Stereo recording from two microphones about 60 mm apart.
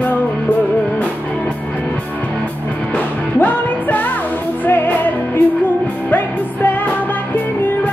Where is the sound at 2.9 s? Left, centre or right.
Left.